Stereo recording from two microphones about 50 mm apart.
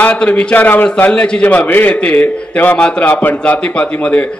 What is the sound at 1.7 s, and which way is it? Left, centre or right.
Speech, left.